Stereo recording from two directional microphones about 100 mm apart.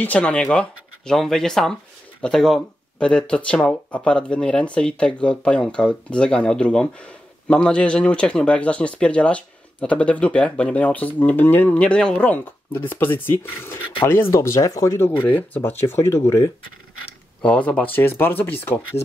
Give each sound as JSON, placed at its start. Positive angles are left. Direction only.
{"t": 0.0, "sound": "speech", "side_deg": 15}
{"t": 17.4, "sound": "speech", "side_deg": 15}